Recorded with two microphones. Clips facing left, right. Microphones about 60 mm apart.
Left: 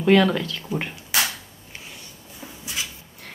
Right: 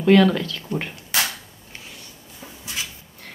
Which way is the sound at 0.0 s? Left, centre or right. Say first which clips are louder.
Right 2 dB; centre.